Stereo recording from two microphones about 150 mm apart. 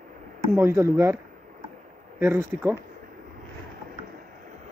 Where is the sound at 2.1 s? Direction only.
15° right (ahead or behind).